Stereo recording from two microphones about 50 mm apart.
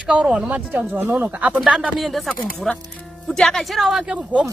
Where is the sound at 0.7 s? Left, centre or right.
Right.